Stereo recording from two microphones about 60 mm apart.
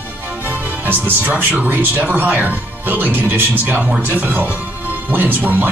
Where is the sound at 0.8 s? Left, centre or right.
Right.